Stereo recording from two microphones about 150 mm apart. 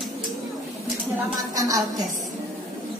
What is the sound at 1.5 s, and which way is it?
Speech, 25° right (ahead or behind).